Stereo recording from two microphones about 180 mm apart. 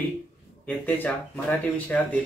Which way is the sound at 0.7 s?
10° left (ahead or behind).